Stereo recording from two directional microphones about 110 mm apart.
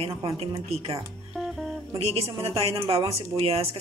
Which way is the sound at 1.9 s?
65° right (ahead or behind).